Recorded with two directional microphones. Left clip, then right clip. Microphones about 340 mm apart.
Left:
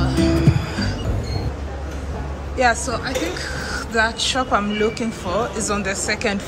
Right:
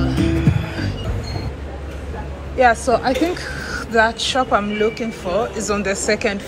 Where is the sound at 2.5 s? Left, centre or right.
Centre.